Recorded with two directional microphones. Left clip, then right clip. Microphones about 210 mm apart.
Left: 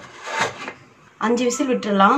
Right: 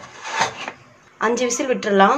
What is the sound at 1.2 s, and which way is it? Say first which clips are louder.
Speech: even; 40° right (ahead or behind).